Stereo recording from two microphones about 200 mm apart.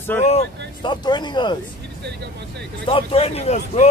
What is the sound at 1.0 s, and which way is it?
Speech, 20° left (ahead or behind).